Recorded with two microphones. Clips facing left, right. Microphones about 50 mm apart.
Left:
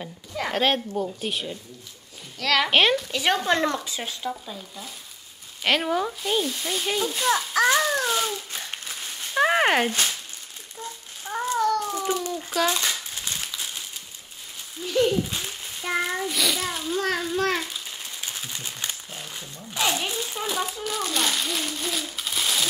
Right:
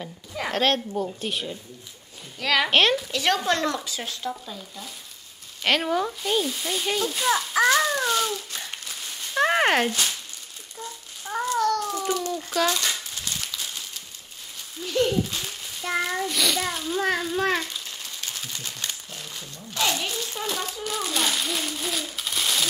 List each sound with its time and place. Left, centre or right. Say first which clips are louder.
0.0 s speech: left 1 dB; centre
2.7 s speech: even; centre
9.3 s a sound: left 1 dB; centre
12.6 s crumpling: even; centre
14.8 s a sound: left 1 dB; centre
17.0 s a child's voice: right 1 dB; centre
18.0 s wild animals: even; centre